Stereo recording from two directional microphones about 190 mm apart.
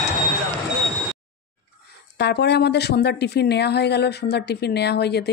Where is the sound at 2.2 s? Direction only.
60° left (ahead or behind).